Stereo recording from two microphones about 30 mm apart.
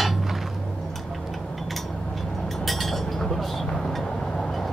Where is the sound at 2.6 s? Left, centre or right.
Centre.